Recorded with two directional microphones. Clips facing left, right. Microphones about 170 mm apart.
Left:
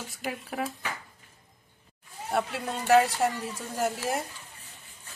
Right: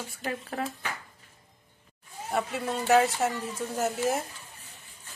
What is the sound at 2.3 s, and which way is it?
A woman's voice, centre (ahead or behind).